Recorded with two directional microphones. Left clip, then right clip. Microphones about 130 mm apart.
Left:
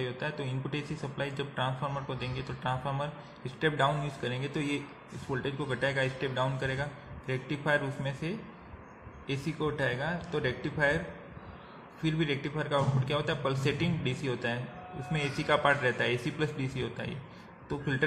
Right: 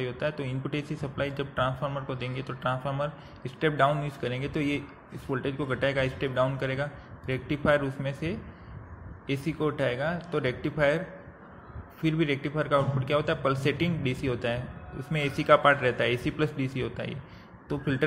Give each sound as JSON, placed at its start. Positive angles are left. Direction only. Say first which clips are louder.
{"t": 0.0, "sound": "a man's voice", "louder": "right 4 dB", "side_deg": -20}
{"t": 12.0, "sound": "a man's voice", "louder": "right 4 dB", "side_deg": -25}